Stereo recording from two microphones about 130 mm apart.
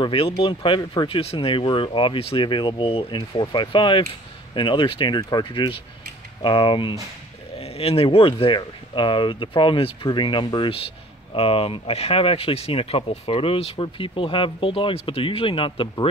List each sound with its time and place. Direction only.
0.0 s speech: 45° left (ahead or behind)